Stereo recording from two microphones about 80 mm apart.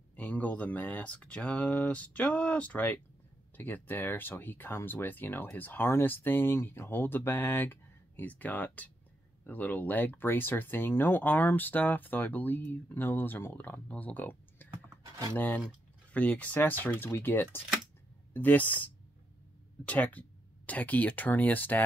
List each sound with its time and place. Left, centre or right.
0.1 s speech: left